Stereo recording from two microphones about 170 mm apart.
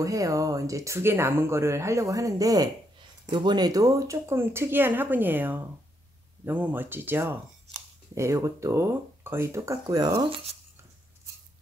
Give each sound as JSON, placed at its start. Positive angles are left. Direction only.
{"t": 0.0, "sound": "speech", "side_deg": -20}